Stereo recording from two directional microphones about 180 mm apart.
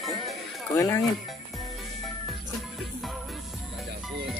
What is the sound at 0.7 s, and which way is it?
Speech, 20° left (ahead or behind).